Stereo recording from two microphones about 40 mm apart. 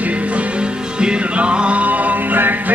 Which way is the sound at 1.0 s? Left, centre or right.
Right.